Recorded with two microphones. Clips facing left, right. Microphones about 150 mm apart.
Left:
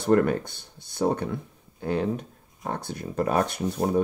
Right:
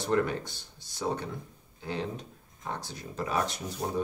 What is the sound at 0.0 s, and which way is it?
Speech, 55° left (ahead or behind).